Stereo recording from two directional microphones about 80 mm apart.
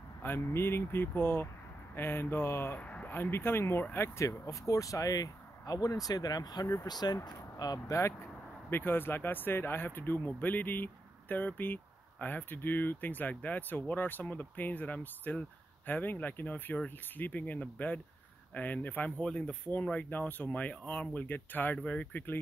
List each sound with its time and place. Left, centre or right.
0.2 s speech: left
8.6 s speech: left